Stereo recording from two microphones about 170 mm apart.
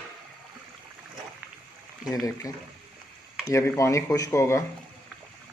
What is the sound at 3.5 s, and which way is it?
Speech, 15° left (ahead or behind).